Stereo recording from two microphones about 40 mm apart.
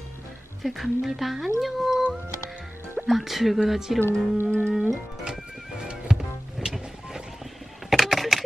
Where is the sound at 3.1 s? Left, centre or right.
Centre.